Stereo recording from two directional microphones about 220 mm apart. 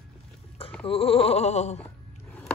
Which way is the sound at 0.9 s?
25° left (ahead or behind).